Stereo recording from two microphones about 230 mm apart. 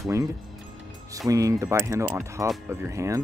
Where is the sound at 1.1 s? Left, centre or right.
Centre.